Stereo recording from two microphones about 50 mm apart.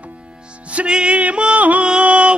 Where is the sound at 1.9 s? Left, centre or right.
Right.